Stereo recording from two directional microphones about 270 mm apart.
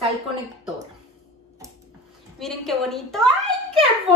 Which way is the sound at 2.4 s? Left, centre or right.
Centre.